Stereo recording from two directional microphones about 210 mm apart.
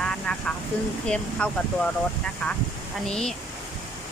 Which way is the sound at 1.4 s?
5° left (ahead or behind).